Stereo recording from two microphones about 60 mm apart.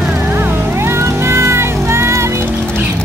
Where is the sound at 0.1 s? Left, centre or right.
Right.